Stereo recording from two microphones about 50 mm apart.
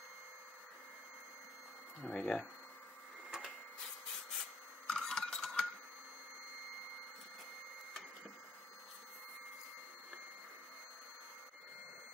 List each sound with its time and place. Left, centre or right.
2.0 s speech: centre
3.3 s printer: centre
4.8 s a sound: centre